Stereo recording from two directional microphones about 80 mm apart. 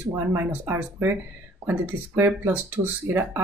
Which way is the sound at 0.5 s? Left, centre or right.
Right.